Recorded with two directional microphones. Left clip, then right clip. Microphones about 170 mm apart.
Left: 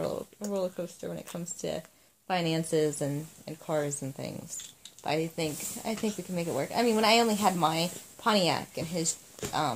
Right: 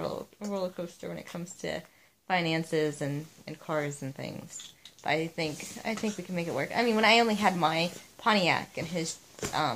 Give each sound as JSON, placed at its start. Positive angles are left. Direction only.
{"t": 0.5, "sound": "speech", "side_deg": 15}